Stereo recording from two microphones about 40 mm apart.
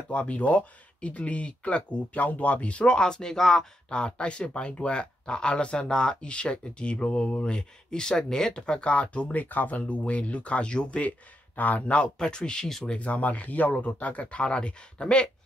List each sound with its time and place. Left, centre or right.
0.1 s speech: left; by 3.6 s centre
3.9 s speech: left
8.6 s speech: left
11.5 s speech: left
12.2 s speech: left